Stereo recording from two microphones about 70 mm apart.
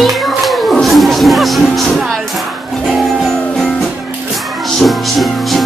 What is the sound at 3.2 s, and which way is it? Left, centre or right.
Music, centre.